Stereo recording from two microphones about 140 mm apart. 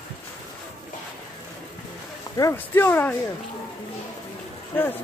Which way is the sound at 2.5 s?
15° left (ahead or behind).